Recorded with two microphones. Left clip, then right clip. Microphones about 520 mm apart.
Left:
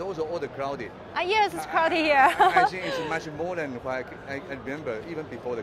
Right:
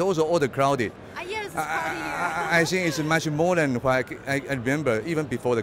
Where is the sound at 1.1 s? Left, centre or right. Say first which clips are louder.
Left 12 dB; left.